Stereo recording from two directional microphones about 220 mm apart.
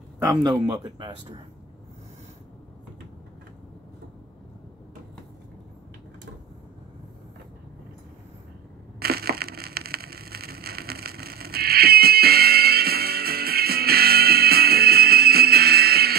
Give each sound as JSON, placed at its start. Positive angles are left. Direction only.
{"t": 0.2, "sound": "speech", "side_deg": -15}
{"t": 9.0, "sound": "crushing", "side_deg": -45}